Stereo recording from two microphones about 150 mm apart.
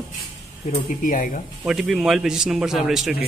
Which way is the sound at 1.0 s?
60° left (ahead or behind).